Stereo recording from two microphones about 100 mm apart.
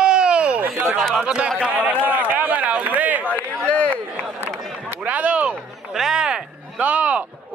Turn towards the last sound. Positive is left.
turn(degrees=-15)  # may be behind; listen again after turning